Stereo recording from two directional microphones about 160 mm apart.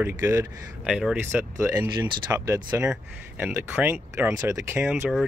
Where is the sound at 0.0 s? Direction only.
15° right (ahead or behind).